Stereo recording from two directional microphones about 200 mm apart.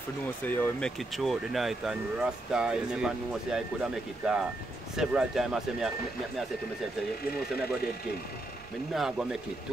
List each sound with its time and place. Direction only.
0.4 s speech: 10° left (ahead or behind)
8.9 s speech: centre (ahead or behind)